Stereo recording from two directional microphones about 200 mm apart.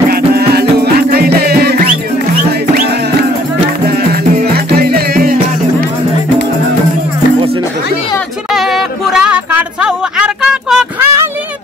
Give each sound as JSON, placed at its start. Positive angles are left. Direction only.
{"t": 0.1, "sound": "music", "side_deg": -50}
{"t": 4.1, "sound": "music", "side_deg": -50}
{"t": 8.5, "sound": "a sound", "side_deg": 0}